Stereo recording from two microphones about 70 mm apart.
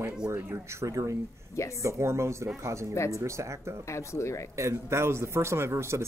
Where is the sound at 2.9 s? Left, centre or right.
Left.